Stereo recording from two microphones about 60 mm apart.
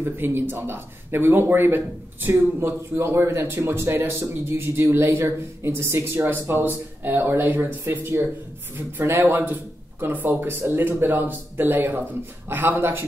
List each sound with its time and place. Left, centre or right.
0.0 s speech: right